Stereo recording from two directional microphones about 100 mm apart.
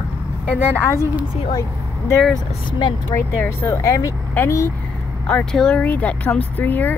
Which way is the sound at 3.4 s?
20° left (ahead or behind).